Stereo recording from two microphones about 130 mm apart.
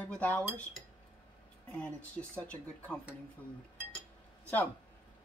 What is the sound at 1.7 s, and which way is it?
Speech, 10° left (ahead or behind).